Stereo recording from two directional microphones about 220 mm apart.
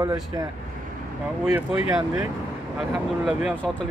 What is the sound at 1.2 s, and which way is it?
Speech, 5° right (ahead or behind).